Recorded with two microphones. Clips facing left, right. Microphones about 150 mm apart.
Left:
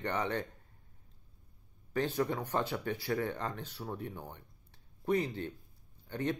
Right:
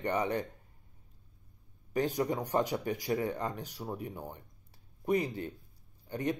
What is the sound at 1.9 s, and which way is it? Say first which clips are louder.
Speech: right 2 dB; 15° right (ahead or behind).